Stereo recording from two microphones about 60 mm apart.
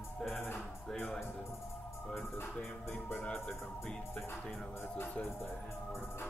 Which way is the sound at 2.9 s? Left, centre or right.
Left.